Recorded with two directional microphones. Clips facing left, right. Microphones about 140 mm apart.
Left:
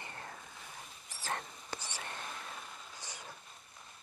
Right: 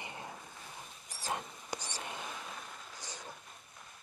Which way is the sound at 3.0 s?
15° right (ahead or behind).